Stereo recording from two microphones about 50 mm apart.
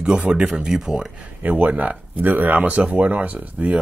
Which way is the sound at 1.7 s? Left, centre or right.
Right.